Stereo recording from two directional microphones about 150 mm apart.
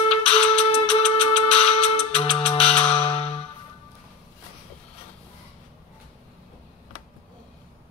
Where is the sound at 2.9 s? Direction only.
40° left (ahead or behind).